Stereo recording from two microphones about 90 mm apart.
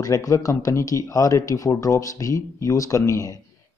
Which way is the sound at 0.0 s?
40° left (ahead or behind).